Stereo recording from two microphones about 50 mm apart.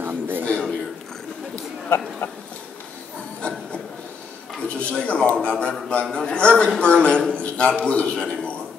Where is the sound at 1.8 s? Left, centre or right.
Left.